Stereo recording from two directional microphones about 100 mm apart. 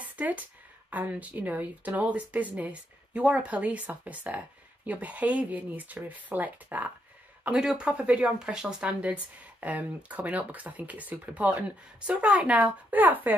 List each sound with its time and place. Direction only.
0.1 s speech: 15° right (ahead or behind)